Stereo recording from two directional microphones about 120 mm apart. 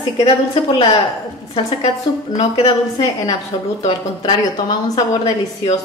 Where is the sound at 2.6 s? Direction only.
30° left (ahead or behind).